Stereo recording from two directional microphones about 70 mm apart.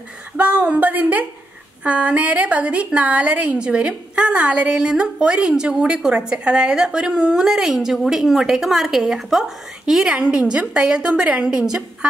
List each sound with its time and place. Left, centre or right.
0.4 s a woman's voice: right